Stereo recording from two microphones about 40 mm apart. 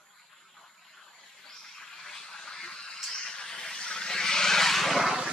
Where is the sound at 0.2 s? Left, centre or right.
Centre.